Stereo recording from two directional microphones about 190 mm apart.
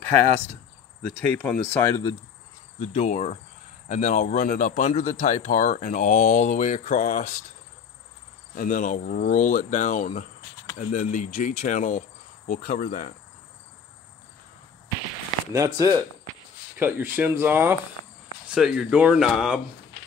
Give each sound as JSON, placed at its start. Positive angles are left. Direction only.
{"t": 1.3, "sound": "speech", "side_deg": 10}
{"t": 2.8, "sound": "speech", "side_deg": 35}
{"t": 8.5, "sound": "speech", "side_deg": 45}
{"t": 12.4, "sound": "cricket", "side_deg": 45}
{"t": 15.5, "sound": "speech", "side_deg": -20}